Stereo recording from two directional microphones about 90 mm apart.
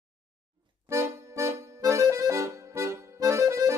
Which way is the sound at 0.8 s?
30° right (ahead or behind).